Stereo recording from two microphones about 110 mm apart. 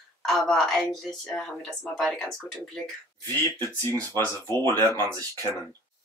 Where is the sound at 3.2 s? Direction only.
25° left (ahead or behind).